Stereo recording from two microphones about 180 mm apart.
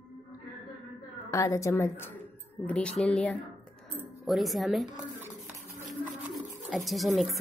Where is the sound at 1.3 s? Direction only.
15° left (ahead or behind); by 5.1 s centre (ahead or behind).